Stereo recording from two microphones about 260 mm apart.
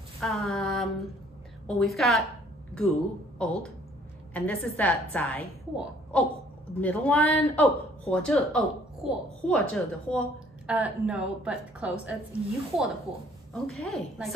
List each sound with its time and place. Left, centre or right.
0.2 s a sound: centre
1.7 s a woman's voice: centre
3.4 s a woman's voice: centre